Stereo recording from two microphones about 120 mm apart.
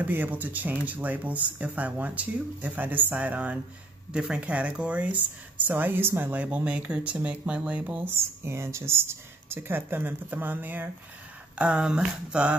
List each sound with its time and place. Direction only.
0.0 s speech: 15° right (ahead or behind)